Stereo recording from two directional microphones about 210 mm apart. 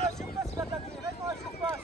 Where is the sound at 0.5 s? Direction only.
15° right (ahead or behind).